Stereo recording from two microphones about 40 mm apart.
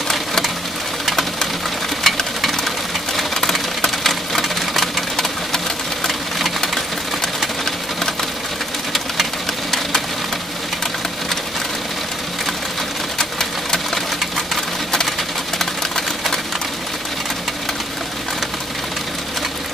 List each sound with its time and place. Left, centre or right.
0.1 s a sound: centre
1.0 s engine knocking: centre
2.0 s a sound: centre
3.8 s sewing machine: centre
6.0 s engine: centre
8.9 s engine: centre